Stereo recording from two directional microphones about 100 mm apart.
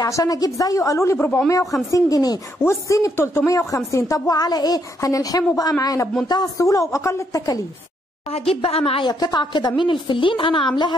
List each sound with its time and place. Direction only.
0.0 s a woman's voice: 40° left (ahead or behind)
8.3 s a woman's voice: 80° left
9.0 s a woman's voice: 45° left (ahead or behind)